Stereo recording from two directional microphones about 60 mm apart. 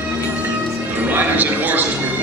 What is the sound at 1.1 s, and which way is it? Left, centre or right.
Speech, right.